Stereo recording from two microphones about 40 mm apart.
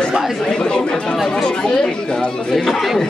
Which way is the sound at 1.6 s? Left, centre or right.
Centre.